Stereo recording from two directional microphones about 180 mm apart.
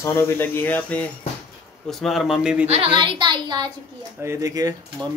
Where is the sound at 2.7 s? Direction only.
30° right (ahead or behind).